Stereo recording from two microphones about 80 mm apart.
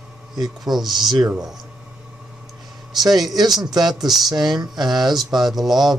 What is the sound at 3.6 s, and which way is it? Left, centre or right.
Speech, right.